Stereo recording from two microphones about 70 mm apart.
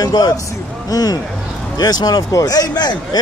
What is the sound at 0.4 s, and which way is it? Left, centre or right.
Speech, left.